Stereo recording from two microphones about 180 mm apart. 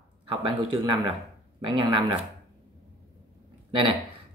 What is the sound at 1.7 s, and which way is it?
Speech, 30° right (ahead or behind).